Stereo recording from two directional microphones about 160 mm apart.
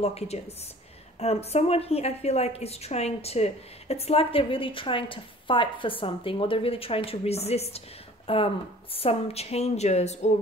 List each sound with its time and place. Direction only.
0.0 s a woman's voice: 40° left (ahead or behind)